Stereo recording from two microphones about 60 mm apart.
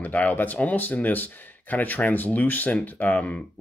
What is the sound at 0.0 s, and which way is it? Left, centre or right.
Speech, left.